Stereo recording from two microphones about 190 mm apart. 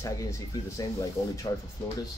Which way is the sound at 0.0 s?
15° left (ahead or behind).